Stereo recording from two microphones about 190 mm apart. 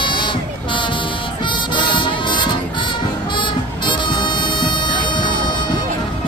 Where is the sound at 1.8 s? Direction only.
25° left (ahead or behind).